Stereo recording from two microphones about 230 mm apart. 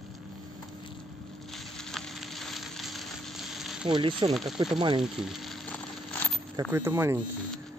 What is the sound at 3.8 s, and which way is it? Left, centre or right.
Speech, right.